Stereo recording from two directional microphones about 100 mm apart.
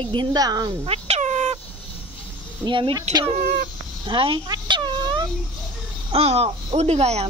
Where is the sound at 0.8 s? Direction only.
85° right.